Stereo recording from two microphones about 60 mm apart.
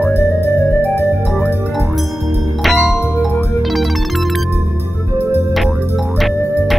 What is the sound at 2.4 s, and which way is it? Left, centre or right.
Music, centre.